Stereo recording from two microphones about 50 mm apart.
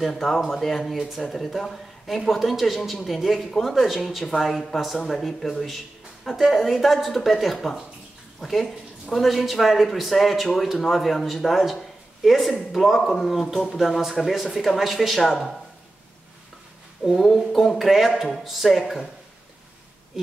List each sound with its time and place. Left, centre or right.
0.0 s a man's voice: centre
17.0 s a man's voice: centre